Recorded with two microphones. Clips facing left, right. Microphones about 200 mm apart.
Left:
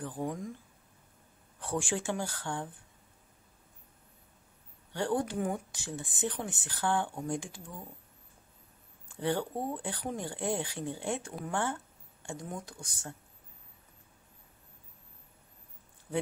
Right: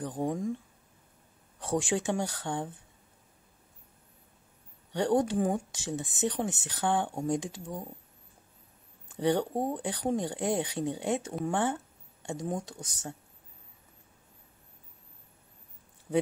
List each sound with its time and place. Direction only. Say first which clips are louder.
0.0 s speech: right 4 dB; 20° right (ahead or behind)
1.6 s speech: right 4 dB; 20° right (ahead or behind)
4.9 s speech: right 5 dB; 20° right (ahead or behind)
9.1 s speech: right 5 dB; 20° right (ahead or behind)
11.4 s a sound: right 3 dB; 20° right (ahead or behind)
12.6 s speech: right 4 dB; 20° right (ahead or behind)